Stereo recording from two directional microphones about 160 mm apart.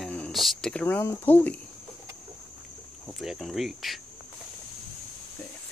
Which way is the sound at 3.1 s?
Centre (ahead or behind).